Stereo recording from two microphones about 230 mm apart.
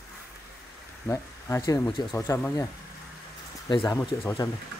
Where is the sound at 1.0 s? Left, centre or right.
Centre.